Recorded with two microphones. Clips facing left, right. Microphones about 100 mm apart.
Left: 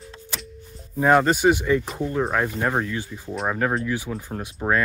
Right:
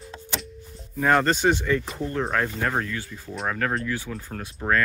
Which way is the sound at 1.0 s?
10° left (ahead or behind).